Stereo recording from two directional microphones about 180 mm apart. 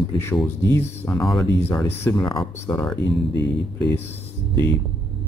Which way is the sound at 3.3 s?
70° left (ahead or behind).